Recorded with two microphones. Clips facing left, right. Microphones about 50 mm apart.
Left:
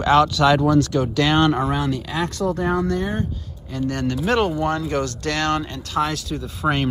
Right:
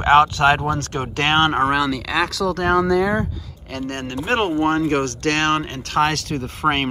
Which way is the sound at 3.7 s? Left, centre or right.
Right.